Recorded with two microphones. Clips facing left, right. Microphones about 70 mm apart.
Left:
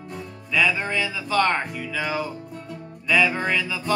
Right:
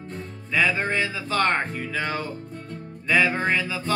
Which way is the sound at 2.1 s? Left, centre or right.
Centre.